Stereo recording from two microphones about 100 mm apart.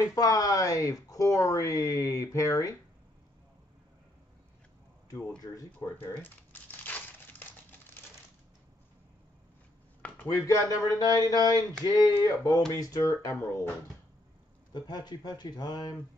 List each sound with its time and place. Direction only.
0.0 s speech: 40° left (ahead or behind)
5.5 s speech: 30° left (ahead or behind)
6.5 s crumpling: 15° left (ahead or behind)
10.2 s speech: 35° left (ahead or behind)
14.7 s speech: 45° left (ahead or behind)